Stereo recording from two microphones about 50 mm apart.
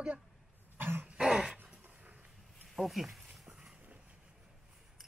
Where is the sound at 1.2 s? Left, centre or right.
Centre.